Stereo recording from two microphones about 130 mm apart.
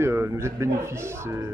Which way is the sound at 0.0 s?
20° right (ahead or behind).